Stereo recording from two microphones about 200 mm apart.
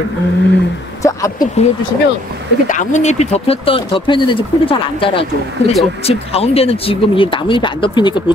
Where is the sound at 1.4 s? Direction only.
35° left (ahead or behind).